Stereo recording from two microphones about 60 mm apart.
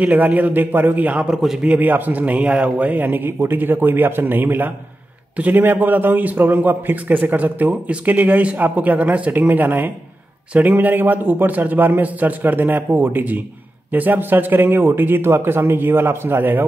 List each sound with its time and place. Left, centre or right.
0.0 s a man's voice: right